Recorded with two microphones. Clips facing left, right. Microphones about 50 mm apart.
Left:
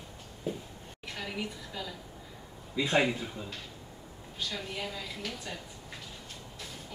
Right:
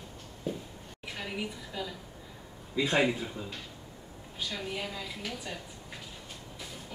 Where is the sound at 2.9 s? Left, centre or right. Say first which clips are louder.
Left 1 dB; centre.